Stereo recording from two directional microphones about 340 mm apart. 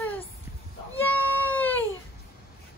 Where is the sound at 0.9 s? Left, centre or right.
Centre.